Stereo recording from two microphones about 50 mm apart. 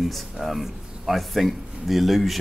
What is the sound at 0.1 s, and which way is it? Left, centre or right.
Speech, centre.